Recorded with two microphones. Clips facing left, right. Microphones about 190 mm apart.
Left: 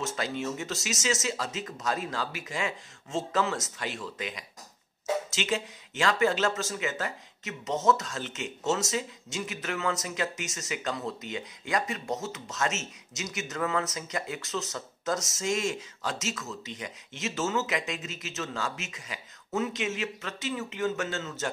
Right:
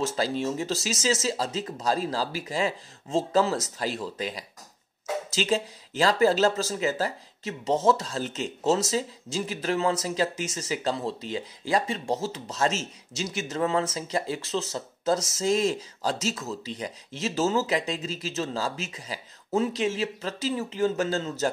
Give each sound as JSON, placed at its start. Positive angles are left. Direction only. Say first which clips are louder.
{"t": 0.0, "sound": "speech", "louder": "right 5 dB", "side_deg": -35}